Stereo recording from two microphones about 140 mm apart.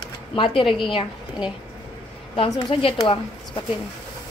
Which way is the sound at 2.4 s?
30° left (ahead or behind).